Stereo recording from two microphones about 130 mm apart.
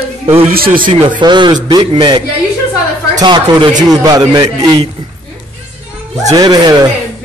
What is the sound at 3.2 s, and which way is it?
A man's voice, 35° right (ahead or behind).